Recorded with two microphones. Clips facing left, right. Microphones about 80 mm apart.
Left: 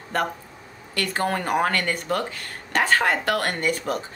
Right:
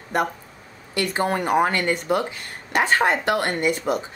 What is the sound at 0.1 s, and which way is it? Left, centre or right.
Speech, centre.